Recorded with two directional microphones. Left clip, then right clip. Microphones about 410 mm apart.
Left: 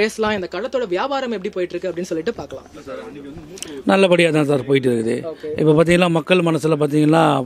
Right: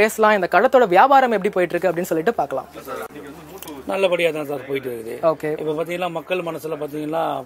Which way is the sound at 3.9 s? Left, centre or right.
Left.